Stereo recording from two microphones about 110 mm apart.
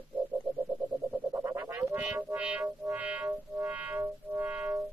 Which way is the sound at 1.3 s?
25° right (ahead or behind).